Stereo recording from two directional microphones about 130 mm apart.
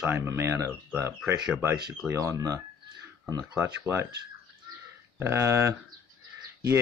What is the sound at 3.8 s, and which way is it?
Speech, 20° right (ahead or behind).